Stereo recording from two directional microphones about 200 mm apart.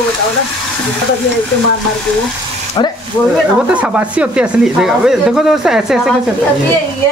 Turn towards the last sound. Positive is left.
turn(degrees=0)  # may be behind; listen again after turning